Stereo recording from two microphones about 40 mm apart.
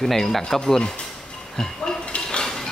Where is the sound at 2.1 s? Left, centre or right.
Centre.